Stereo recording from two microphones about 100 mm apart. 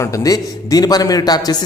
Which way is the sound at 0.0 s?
35° left (ahead or behind).